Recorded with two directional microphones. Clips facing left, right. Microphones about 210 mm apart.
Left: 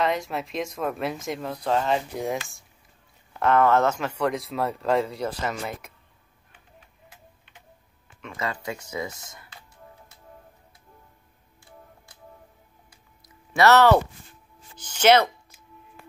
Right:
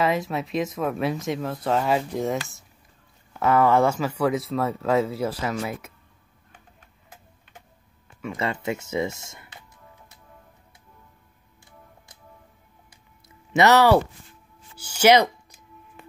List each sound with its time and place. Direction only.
0.0 s speech: centre (ahead or behind)
3.3 s speech: 10° right (ahead or behind)
8.4 s speech: 25° right (ahead or behind)
13.5 s speech: 15° right (ahead or behind)